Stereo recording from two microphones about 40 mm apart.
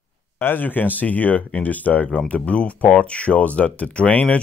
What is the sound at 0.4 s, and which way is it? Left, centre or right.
Speech, left.